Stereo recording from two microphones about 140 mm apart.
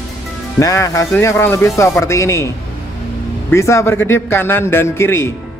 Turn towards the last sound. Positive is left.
turn(degrees=20)  # may be behind; listen again after turning